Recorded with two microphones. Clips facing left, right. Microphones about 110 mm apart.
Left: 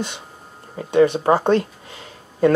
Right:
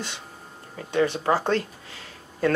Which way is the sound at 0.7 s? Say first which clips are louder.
Left 8 dB; 15° left (ahead or behind).